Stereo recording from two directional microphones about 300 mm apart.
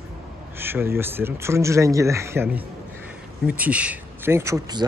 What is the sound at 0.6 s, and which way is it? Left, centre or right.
A man's voice, centre.